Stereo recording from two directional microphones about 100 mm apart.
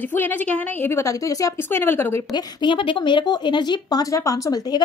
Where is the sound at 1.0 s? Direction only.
35° left (ahead or behind).